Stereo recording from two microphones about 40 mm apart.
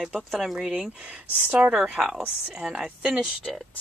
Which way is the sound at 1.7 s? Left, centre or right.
Centre.